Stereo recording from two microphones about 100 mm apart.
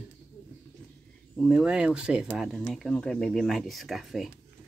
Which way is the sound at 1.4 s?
5° right (ahead or behind).